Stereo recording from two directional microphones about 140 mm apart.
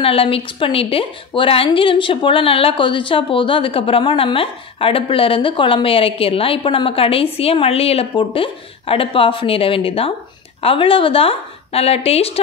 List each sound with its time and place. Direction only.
0.0 s a woman's voice: 40° left (ahead or behind)